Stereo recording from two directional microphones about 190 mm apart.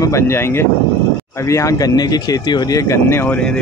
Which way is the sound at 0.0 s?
15° left (ahead or behind).